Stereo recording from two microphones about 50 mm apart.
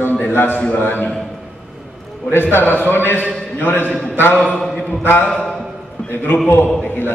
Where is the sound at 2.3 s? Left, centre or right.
Left.